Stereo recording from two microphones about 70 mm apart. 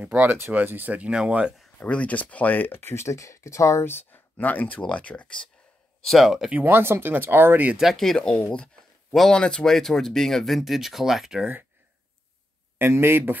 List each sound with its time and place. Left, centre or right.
0.0 s speech: right
1.8 s speech: centre
6.0 s speech: centre
6.6 s speech: right
7.7 s speech: centre
12.7 s speech: right